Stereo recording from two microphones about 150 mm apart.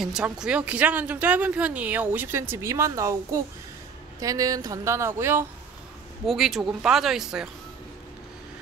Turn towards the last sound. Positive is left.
turn(degrees=-5)  # may be behind; listen again after turning